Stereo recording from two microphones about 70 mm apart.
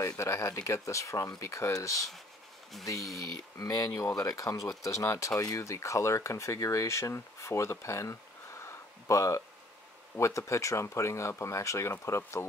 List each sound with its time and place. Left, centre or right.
0.2 s speech: left
3.5 s speech: left
4.8 s speech: left
5.3 s speech: left